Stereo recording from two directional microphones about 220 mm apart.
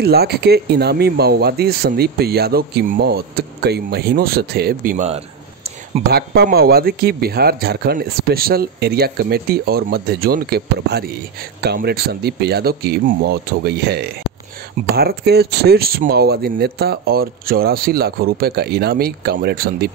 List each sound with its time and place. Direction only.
0.0 s speech: 45° right (ahead or behind)
6.0 s speech: 45° right (ahead or behind)